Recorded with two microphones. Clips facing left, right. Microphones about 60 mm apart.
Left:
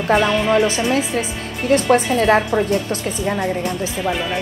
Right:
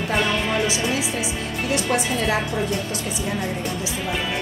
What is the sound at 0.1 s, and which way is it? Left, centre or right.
Speech, centre.